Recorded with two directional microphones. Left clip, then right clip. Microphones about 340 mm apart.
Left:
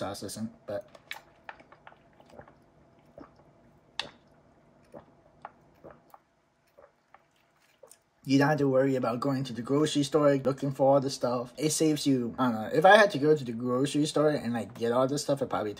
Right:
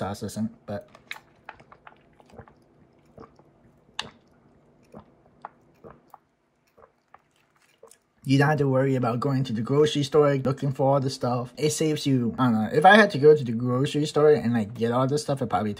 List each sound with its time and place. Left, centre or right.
8.2 s speech: right